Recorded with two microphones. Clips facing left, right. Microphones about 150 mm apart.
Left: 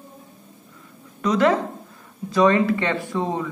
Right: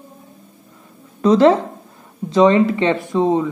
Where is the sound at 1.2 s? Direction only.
30° right (ahead or behind).